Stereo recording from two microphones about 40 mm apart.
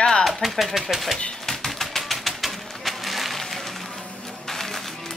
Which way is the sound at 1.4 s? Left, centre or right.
Centre.